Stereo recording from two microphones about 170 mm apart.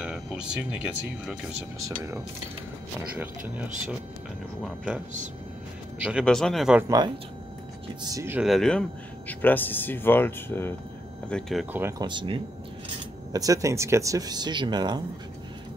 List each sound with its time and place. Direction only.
0.0 s speech: 5° right (ahead or behind)
3.2 s speech: 10° right (ahead or behind)
6.8 s speech: 20° right (ahead or behind)
8.1 s speech: 15° right (ahead or behind)
8.4 s speech: centre (ahead or behind)
12.0 s speech: 30° right (ahead or behind)